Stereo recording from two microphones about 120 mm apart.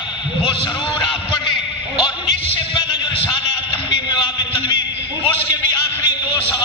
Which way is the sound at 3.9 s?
40° left (ahead or behind).